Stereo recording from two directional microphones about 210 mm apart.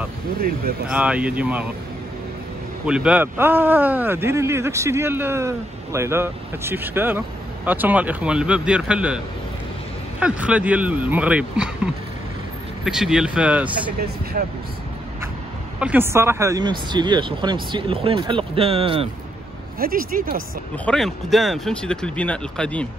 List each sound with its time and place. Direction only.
0.8 s speech: 5° right (ahead or behind)
2.9 s speech: 5° right (ahead or behind)
10.2 s speech: 5° right (ahead or behind)
14.3 s speech: 40° right (ahead or behind)
15.8 s speech: 10° right (ahead or behind); by 19.0 s 25° right (ahead or behind)
19.8 s speech: 45° right (ahead or behind)
20.7 s speech: 5° left (ahead or behind)